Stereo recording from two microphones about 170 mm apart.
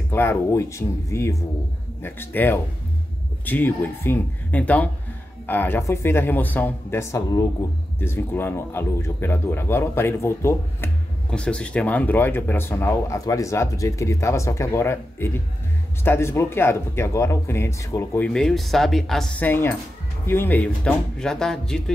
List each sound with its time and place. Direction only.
0.1 s speech: 15° left (ahead or behind)